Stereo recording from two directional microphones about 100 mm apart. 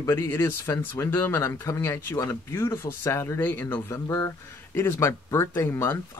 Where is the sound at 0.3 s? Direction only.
25° left (ahead or behind).